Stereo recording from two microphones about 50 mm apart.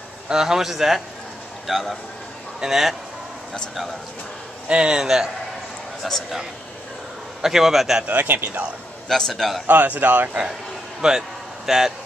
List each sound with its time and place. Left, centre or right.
0.3 s a man's voice: centre
4.6 s a man's voice: centre
5.0 s a man's voice: centre
7.4 s a man's voice: centre
8.1 s speech: right
9.1 s a man's voice: centre
9.7 s speech: right
11.0 s a sound: centre